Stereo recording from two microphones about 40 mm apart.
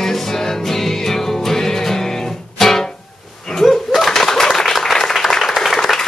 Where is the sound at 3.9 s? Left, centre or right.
Centre.